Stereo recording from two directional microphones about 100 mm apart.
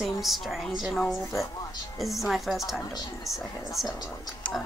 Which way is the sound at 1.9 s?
Centre (ahead or behind).